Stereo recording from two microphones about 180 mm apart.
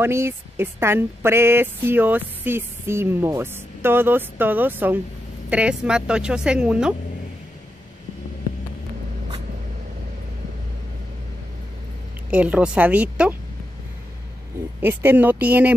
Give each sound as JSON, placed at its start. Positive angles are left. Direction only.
{"t": 0.0, "sound": "a woman's voice", "side_deg": -15}
{"t": 12.3, "sound": "speech", "side_deg": -5}
{"t": 14.8, "sound": "speech", "side_deg": -10}